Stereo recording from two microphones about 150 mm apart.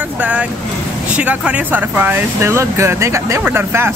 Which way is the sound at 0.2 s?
10° right (ahead or behind).